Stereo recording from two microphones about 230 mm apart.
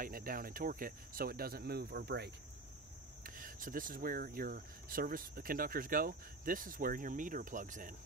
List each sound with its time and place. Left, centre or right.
0.0 s speech: right